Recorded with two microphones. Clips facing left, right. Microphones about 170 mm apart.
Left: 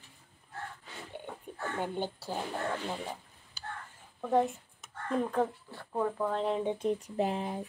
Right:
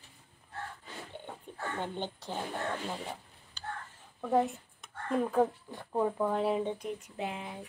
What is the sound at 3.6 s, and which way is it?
Whispering, 10° left (ahead or behind).